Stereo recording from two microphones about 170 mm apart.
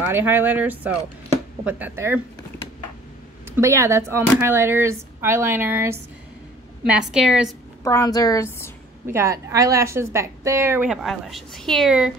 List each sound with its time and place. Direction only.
0.0 s a woman's voice: 10° right (ahead or behind)
3.4 s a woman's voice: 15° right (ahead or behind)
7.8 s a woman's voice: 20° left (ahead or behind)
9.1 s a woman's voice: 15° right (ahead or behind)